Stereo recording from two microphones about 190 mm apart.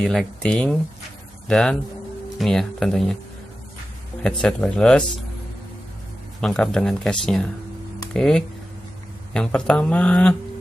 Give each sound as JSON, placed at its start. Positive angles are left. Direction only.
{"t": 0.0, "sound": "speech", "side_deg": 0}
{"t": 4.2, "sound": "speech", "side_deg": 5}
{"t": 6.4, "sound": "speech", "side_deg": 5}